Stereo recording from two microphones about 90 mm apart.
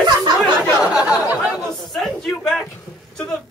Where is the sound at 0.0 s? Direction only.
50° right (ahead or behind).